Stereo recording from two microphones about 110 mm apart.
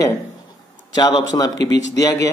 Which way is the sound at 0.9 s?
40° left (ahead or behind).